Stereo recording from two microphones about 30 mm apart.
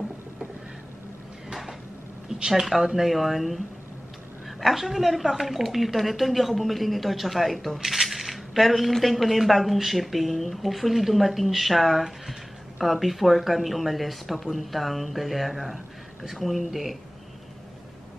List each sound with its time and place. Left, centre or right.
2.3 s speech: right
2.6 s speech: centre
7.8 s coin: centre
8.9 s speech: centre